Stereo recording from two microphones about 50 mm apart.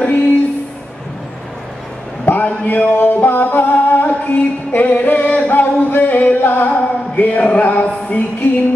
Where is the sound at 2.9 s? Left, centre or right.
Left.